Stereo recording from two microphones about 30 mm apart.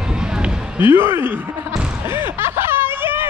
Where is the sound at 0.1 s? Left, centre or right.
Right.